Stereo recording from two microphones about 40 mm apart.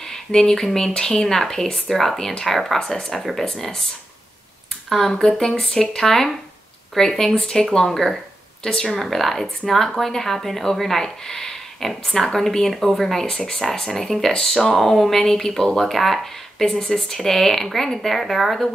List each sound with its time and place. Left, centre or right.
0.1 s speech: centre
4.8 s speech: centre
8.6 s a woman's voice: left
8.9 s speech: centre